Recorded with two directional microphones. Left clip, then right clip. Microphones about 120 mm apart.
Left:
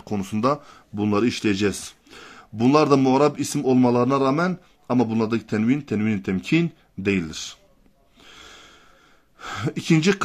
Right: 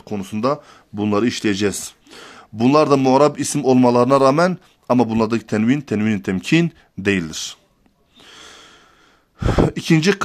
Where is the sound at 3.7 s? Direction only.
50° right (ahead or behind).